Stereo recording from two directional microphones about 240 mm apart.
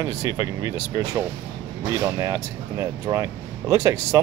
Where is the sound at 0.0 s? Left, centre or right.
Centre.